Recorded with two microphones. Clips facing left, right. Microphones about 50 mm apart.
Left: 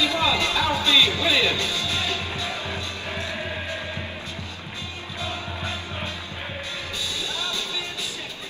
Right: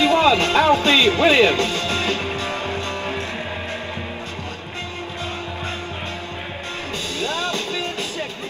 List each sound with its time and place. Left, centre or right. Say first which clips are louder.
0.0 s music: right 7 dB; right
7.2 s music: right 9 dB; right